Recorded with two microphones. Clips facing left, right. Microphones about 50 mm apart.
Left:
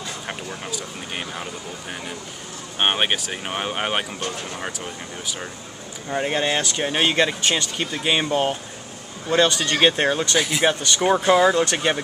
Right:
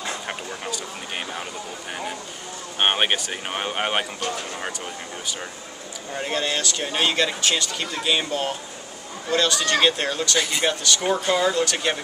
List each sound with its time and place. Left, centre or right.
0.3 s speech: centre
6.0 s speech: left
11.6 s speech: left